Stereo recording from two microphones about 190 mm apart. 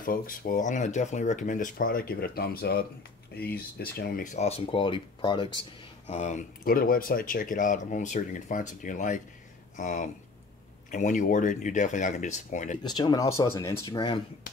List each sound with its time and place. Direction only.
0.0 s speech: 50° left (ahead or behind)
4.3 s speech: 35° left (ahead or behind)
6.0 s speech: 35° left (ahead or behind)
12.8 s speech: 20° left (ahead or behind)